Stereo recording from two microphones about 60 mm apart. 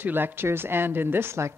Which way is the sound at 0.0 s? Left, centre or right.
Right.